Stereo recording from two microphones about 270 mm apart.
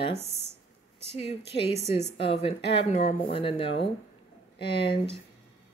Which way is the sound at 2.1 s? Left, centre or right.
Left.